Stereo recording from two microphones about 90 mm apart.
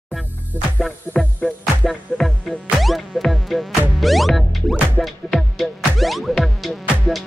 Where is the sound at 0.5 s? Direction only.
20° right (ahead or behind).